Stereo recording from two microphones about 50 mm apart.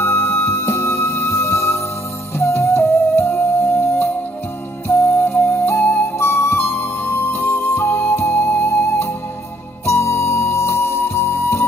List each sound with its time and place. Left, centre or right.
0.0 s music: left
5.3 s music: left
5.7 s music: left
7.3 s music: left